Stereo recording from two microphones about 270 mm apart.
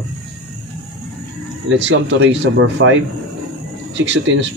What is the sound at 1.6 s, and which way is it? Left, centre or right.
Speech, right.